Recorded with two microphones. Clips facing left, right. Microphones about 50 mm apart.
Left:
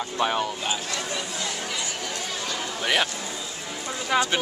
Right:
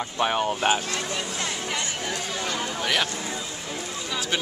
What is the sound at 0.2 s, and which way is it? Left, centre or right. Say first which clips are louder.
Speech: even; centre.